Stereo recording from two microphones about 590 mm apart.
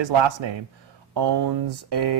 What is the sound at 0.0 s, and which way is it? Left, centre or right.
Speech, right.